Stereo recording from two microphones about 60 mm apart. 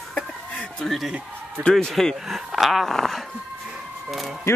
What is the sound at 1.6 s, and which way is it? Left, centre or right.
Speech, right.